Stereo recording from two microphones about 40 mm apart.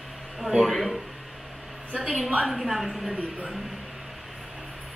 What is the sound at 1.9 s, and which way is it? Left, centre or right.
Speech, right.